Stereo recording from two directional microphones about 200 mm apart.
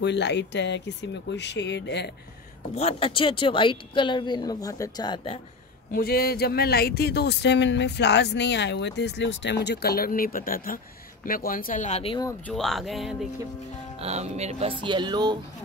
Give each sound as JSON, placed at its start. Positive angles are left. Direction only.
{"t": 0.0, "sound": "speech", "side_deg": 60}
{"t": 2.7, "sound": "speech", "side_deg": 30}
{"t": 5.9, "sound": "speech", "side_deg": 50}
{"t": 12.3, "sound": "speech", "side_deg": 5}
{"t": 13.9, "sound": "speech", "side_deg": -30}